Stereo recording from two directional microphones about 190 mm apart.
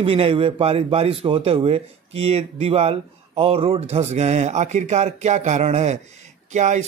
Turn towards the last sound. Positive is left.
turn(degrees=-40)  # may be behind; listen again after turning